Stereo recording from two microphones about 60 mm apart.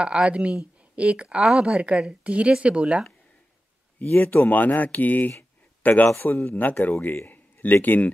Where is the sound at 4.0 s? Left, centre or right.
Left.